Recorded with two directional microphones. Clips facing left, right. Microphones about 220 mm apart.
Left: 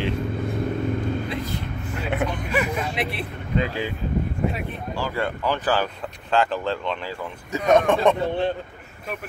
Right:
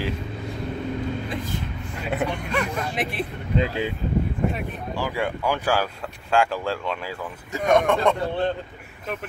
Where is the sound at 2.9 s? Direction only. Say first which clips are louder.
Right 1 dB; 50° right (ahead or behind).